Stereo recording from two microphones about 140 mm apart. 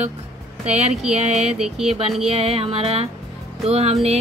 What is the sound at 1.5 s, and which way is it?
Speech, 5° right (ahead or behind).